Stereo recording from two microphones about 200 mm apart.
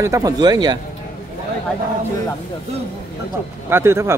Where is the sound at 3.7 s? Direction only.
10° right (ahead or behind).